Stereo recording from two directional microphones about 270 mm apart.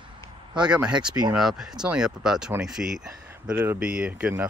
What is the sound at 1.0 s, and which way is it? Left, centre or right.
Speech, centre.